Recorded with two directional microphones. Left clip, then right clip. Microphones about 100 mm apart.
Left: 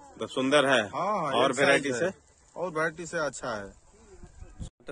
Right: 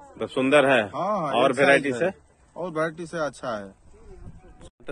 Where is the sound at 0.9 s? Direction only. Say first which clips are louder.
Right 3 dB; 45° left (ahead or behind).